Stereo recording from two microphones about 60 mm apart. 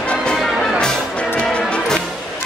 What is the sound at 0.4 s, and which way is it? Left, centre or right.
Music, centre.